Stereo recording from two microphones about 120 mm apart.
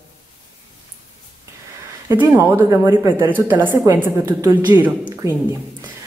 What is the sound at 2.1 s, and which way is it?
Speech, 20° right (ahead or behind).